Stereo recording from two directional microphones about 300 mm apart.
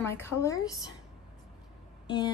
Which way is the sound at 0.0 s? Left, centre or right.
Centre.